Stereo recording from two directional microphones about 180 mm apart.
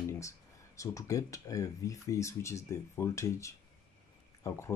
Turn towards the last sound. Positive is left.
turn(degrees=15)  # may be behind; listen again after turning